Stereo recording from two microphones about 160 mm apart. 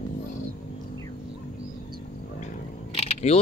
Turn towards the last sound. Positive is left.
turn(degrees=40)  # may be behind; listen again after turning